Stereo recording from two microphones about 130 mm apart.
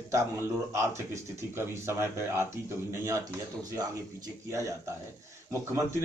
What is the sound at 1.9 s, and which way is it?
A man's voice, 20° right (ahead or behind).